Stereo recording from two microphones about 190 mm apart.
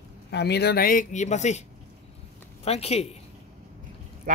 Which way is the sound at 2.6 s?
35° left (ahead or behind).